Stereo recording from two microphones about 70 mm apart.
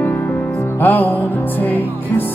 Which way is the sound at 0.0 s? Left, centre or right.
Left.